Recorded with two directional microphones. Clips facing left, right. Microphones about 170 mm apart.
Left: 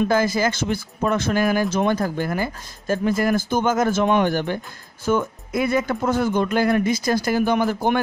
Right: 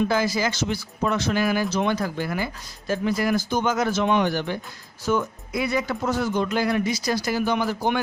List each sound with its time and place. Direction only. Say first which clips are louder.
0.1 s speech: left 3 dB; 50° left (ahead or behind)